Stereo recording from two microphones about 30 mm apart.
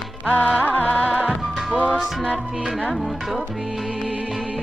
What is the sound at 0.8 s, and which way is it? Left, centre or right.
Music, left.